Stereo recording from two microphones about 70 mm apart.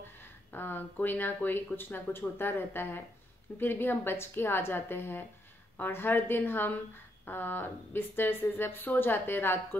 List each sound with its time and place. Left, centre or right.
0.2 s a woman's voice: left